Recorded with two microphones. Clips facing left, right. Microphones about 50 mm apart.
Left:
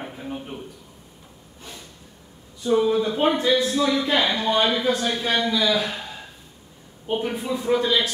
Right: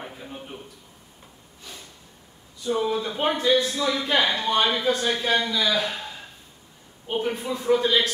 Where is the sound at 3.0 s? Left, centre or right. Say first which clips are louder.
Left 2 dB; left.